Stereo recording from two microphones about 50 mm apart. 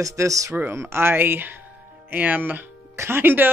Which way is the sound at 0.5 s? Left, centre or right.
Right.